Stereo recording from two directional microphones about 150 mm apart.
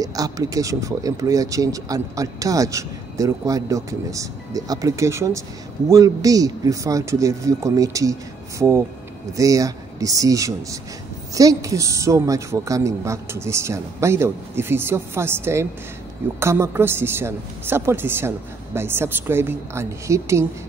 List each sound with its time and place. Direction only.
0.0 s a woman's voice: 25° right (ahead or behind)